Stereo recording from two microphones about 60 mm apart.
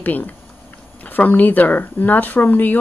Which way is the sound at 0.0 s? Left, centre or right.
Left.